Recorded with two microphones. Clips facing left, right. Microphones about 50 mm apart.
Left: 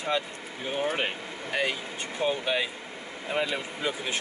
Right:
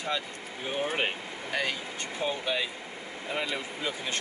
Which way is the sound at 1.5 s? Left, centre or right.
Centre.